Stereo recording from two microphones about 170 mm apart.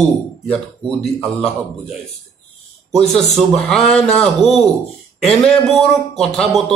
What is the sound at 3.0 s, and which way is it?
A man's voice, centre (ahead or behind).